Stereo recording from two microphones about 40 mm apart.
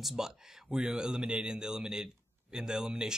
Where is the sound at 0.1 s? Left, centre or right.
Centre.